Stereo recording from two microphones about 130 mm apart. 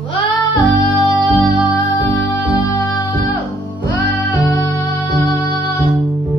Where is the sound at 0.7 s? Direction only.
40° right (ahead or behind).